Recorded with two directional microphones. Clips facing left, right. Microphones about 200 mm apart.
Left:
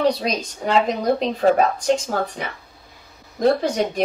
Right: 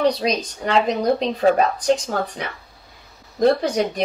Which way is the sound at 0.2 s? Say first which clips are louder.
Right 2 dB; centre (ahead or behind).